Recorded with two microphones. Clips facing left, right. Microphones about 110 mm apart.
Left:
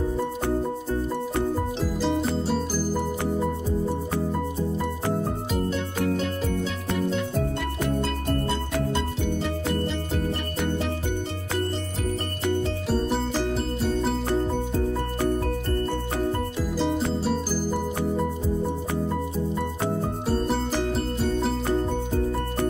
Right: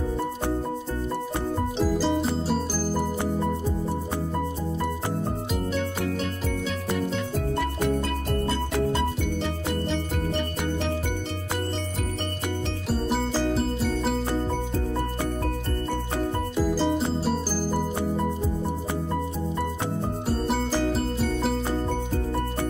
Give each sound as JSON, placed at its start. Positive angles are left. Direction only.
{"t": 1.8, "sound": "music", "side_deg": 0}
{"t": 12.9, "sound": "music", "side_deg": 0}
{"t": 16.5, "sound": "music", "side_deg": 0}
{"t": 20.4, "sound": "music", "side_deg": 0}